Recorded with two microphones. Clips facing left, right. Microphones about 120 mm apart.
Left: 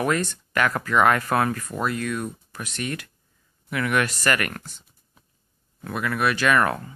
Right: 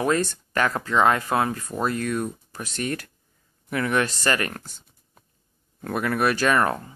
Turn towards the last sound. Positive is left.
turn(degrees=-30)  # may be behind; listen again after turning